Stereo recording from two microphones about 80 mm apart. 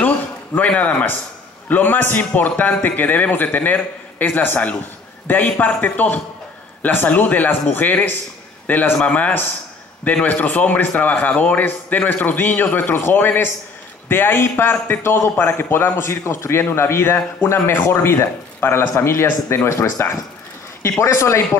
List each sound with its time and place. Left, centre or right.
0.6 s a man's voice: centre; by 21.4 s left